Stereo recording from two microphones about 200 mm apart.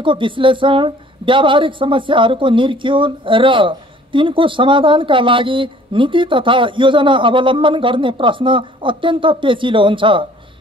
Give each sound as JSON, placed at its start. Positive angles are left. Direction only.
{"t": 0.0, "sound": "a woman's voice", "side_deg": -25}